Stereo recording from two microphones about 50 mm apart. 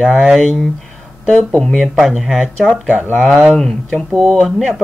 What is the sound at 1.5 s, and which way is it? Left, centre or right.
Speech, centre.